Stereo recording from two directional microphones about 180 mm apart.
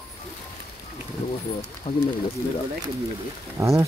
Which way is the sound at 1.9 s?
40° left (ahead or behind).